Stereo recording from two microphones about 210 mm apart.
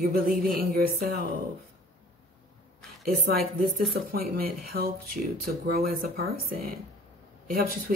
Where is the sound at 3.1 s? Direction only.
45° right (ahead or behind).